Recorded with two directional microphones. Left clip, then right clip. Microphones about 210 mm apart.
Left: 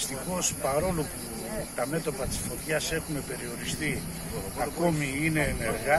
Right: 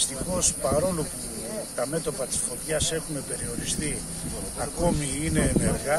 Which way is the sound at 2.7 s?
10° right (ahead or behind).